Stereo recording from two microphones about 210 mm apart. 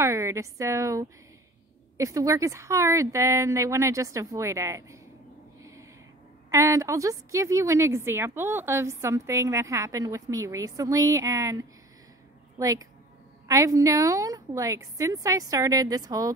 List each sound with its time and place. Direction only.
0.0 s a woman's voice: 15° right (ahead or behind)
5.6 s a sound: 15° right (ahead or behind)
6.5 s a woman's voice: 15° right (ahead or behind)